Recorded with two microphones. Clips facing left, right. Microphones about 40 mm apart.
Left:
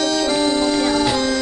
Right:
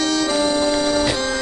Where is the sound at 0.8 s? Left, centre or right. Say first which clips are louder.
Left 1 dB; left.